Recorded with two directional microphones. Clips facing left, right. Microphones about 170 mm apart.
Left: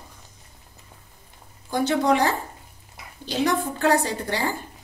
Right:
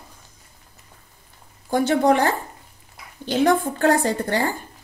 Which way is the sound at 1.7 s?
50° right (ahead or behind).